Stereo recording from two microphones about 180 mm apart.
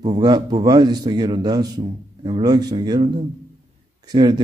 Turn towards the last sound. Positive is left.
turn(degrees=-20)  # may be behind; listen again after turning